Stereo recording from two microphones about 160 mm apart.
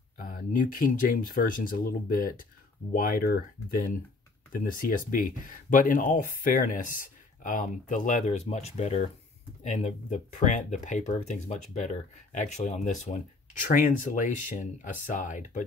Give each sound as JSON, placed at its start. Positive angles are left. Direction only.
{"t": 0.2, "sound": "speech", "side_deg": 60}
{"t": 4.5, "sound": "speech", "side_deg": 60}